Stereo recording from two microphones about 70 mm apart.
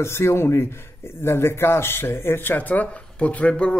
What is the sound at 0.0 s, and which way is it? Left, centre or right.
Speech, left.